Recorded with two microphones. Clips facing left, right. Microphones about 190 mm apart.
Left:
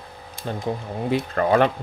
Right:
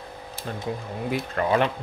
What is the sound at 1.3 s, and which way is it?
Speech, 45° left (ahead or behind).